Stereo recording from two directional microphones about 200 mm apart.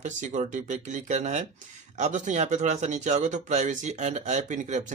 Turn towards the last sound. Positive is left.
turn(degrees=-35)  # may be behind; listen again after turning